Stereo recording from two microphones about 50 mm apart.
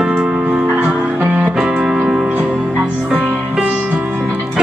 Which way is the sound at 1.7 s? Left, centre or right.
Centre.